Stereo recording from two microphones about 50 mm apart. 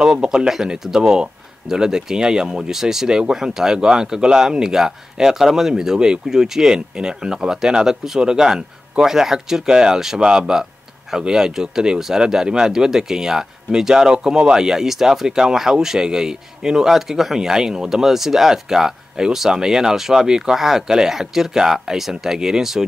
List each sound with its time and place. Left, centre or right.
0.0 s speech: centre